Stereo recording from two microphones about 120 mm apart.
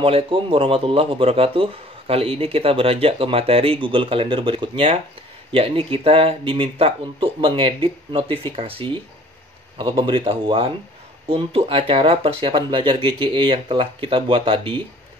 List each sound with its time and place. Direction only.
0.0 s speech: 50° right (ahead or behind)